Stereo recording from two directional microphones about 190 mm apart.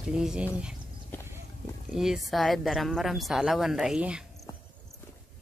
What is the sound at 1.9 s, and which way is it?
Speech, centre (ahead or behind).